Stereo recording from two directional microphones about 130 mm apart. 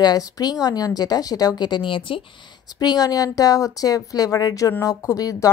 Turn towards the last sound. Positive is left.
turn(degrees=25)  # may be behind; listen again after turning